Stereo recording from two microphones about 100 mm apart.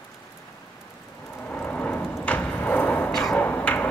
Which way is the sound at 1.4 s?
20° left (ahead or behind).